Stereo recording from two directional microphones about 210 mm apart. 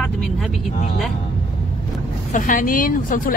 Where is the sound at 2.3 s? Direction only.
40° left (ahead or behind).